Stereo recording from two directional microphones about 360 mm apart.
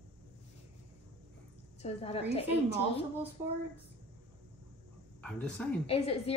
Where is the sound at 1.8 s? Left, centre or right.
Centre.